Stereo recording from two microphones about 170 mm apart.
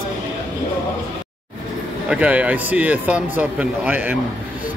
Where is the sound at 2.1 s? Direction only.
10° right (ahead or behind).